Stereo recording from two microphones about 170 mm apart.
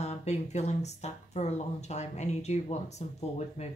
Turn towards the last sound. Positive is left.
turn(degrees=40)  # may be behind; listen again after turning